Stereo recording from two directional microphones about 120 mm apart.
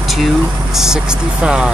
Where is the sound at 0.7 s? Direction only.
5° right (ahead or behind).